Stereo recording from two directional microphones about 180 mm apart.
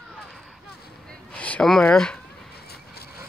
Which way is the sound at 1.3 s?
10° left (ahead or behind).